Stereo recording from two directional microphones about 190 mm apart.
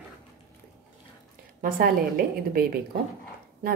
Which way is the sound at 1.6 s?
50° right (ahead or behind).